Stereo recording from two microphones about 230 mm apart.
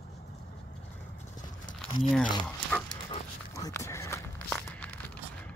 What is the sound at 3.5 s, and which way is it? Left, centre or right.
Walk, centre.